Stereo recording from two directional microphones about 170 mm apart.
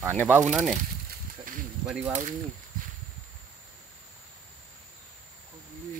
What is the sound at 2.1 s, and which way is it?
Speech, 50° right (ahead or behind).